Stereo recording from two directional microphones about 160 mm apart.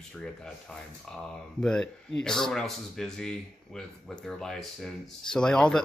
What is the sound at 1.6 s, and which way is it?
Speech, 5° left (ahead or behind).